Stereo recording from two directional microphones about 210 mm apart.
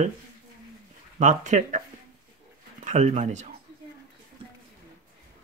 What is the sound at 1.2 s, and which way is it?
Speech, 35° right (ahead or behind).